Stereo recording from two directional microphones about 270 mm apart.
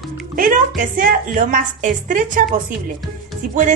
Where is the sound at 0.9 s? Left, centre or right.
Right.